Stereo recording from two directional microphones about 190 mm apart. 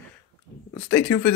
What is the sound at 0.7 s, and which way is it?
Speech, 10° left (ahead or behind).